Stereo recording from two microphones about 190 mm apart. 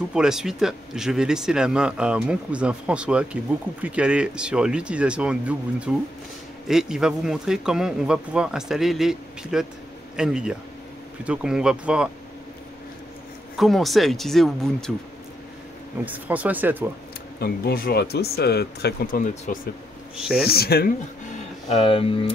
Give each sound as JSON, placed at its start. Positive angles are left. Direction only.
{"t": 0.1, "sound": "speech", "side_deg": -5}
{"t": 13.6, "sound": "speech", "side_deg": 0}
{"t": 16.1, "sound": "speech", "side_deg": -10}
{"t": 17.4, "sound": "speech", "side_deg": 50}
{"t": 20.4, "sound": "speech", "side_deg": 55}
{"t": 21.6, "sound": "speech", "side_deg": 30}